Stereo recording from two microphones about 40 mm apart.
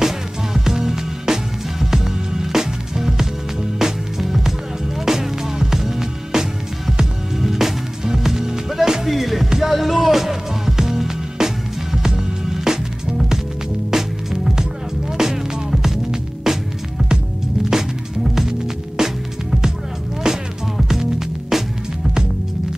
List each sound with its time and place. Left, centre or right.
0.0 s music: centre
13.8 s music: centre
17.6 s music: centre